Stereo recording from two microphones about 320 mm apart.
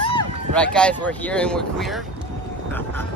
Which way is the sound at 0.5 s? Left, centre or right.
Centre.